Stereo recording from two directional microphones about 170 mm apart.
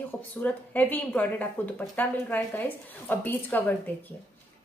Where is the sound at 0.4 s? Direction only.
10° left (ahead or behind).